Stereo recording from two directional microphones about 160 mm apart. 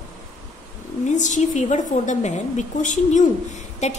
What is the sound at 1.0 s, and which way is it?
A woman's voice, 50° left (ahead or behind).